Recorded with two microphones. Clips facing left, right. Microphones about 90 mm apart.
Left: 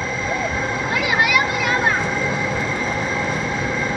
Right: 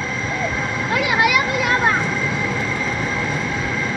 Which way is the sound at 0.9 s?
Centre (ahead or behind).